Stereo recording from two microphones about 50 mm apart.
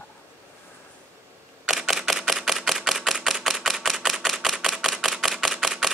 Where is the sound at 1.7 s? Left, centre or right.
Centre.